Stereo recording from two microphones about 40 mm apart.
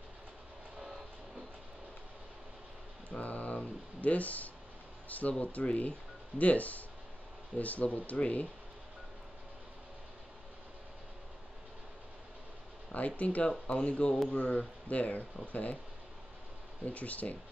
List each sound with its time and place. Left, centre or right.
0.7 s a sound: centre
3.1 s a sound: left
5.4 s speech: left
12.9 s speech: left
13.7 s speech: left
16.8 s speech: left